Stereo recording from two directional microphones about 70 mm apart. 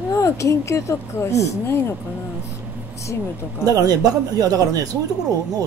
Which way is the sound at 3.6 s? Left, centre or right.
Right.